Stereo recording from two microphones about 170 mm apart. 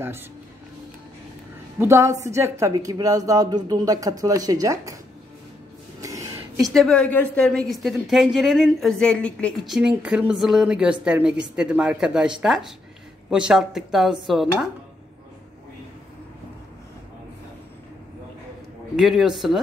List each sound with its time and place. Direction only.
1.8 s a woman's voice: 15° right (ahead or behind)
5.9 s a sound: 20° right (ahead or behind)
6.6 s a woman's voice: centre (ahead or behind)
9.8 s a woman's voice: 5° right (ahead or behind)
18.9 s a woman's voice: centre (ahead or behind)